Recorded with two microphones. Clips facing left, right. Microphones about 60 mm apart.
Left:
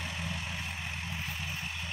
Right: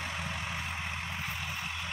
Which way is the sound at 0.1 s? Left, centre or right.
Right.